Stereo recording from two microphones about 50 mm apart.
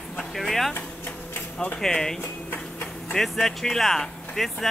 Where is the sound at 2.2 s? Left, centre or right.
Left.